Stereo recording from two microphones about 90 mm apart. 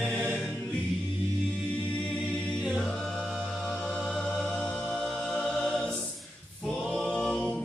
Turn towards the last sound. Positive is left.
turn(degrees=5)  # may be behind; listen again after turning